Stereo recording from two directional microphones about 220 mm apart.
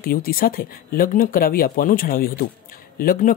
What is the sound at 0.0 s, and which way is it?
Speech, 40° left (ahead or behind).